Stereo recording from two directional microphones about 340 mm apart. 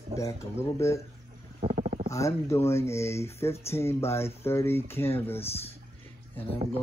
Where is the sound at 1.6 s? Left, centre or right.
Centre.